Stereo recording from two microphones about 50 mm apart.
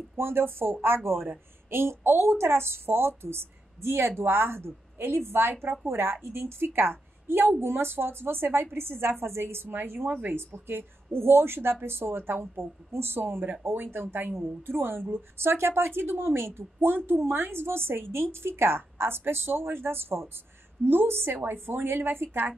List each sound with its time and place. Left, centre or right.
0.2 s a woman's voice: right
9.7 s a woman's voice: right
10.5 s speech: right